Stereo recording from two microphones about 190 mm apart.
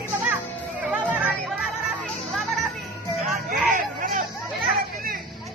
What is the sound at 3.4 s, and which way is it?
Hubbub, 50° right (ahead or behind).